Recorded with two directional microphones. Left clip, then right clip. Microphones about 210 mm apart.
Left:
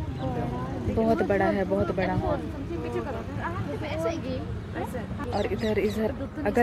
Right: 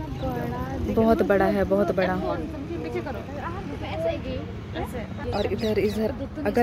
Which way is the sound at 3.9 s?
55° left (ahead or behind).